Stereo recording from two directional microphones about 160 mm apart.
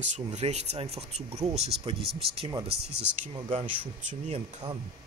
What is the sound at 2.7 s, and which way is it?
Speech, 90° right.